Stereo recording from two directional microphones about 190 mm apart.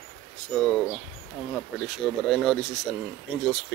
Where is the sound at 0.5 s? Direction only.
5° left (ahead or behind).